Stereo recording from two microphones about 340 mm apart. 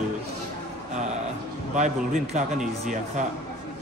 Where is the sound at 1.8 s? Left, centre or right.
Right.